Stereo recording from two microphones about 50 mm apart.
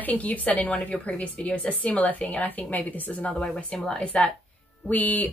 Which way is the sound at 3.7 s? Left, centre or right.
Centre.